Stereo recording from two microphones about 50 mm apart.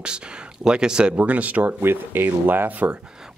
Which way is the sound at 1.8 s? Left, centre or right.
Right.